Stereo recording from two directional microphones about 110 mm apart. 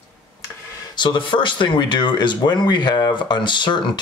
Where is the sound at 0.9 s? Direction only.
45° left (ahead or behind).